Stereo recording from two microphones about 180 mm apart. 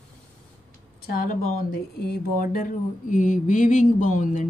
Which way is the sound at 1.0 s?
55° left (ahead or behind).